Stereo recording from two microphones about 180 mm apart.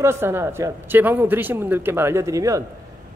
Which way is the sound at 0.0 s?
15° right (ahead or behind).